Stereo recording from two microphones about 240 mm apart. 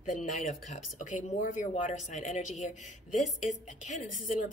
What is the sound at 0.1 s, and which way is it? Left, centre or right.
Speech, left.